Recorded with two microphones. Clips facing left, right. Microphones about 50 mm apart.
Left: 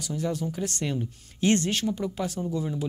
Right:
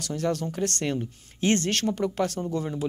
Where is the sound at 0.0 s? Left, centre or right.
Right.